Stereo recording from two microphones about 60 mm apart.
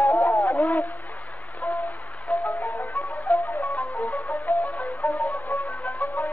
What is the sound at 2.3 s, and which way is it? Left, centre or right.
Music, left.